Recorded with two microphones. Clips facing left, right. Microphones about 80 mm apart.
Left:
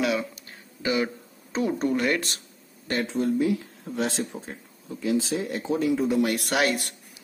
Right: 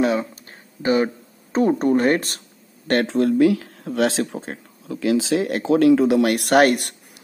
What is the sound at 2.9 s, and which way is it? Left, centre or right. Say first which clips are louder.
Speech: right 7 dB; right.